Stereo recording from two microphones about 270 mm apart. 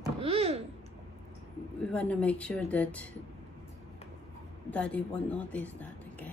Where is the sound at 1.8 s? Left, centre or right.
Centre.